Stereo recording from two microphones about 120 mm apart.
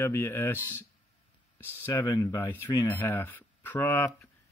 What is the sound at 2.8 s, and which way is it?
Speech, 20° left (ahead or behind).